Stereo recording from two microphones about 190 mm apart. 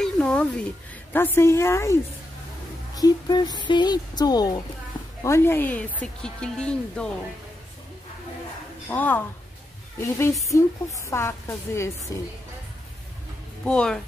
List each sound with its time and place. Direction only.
0.0 s a sound: 5° left (ahead or behind)
1.1 s a woman's voice: 10° left (ahead or behind)
8.8 s a woman's voice: 10° left (ahead or behind)
13.7 s speech: 5° left (ahead or behind)